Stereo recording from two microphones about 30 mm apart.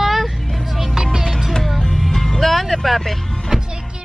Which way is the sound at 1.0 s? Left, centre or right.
Right.